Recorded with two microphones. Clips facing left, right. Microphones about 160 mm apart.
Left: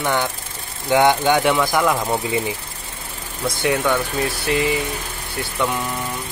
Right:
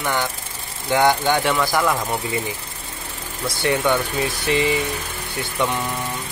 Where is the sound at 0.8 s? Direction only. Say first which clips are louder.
Left 2 dB; 20° left (ahead or behind).